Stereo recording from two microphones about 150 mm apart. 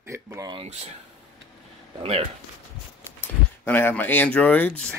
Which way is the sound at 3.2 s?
15° left (ahead or behind).